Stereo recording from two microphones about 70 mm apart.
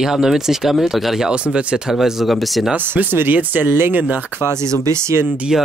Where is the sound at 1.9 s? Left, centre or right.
Centre.